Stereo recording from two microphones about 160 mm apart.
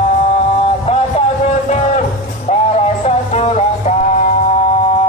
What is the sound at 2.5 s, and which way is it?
Music, 40° left (ahead or behind).